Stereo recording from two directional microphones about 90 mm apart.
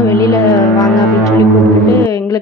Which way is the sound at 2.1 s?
40° left (ahead or behind).